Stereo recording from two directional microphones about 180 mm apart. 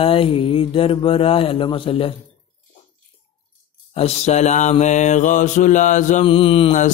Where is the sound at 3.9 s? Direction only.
35° left (ahead or behind).